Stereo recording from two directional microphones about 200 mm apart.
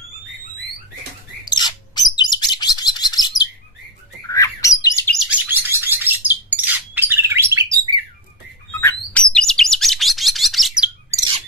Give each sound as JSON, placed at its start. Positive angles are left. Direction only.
{"t": 1.4, "sound": "bird", "side_deg": 20}
{"t": 5.2, "sound": "bird", "side_deg": -10}
{"t": 8.8, "sound": "chirp", "side_deg": 5}
{"t": 11.1, "sound": "bird", "side_deg": -20}